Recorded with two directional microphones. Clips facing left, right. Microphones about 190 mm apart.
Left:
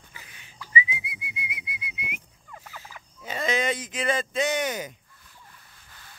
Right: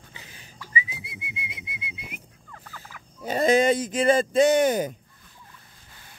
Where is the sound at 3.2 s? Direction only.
40° right (ahead or behind).